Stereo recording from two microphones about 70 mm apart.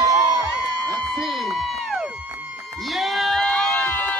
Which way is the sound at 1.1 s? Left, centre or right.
Centre.